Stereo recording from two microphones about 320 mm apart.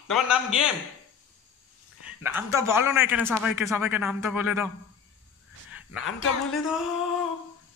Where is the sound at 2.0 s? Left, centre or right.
Centre.